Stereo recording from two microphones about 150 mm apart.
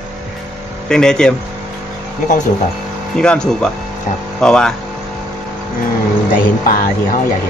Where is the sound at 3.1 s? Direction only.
5° left (ahead or behind).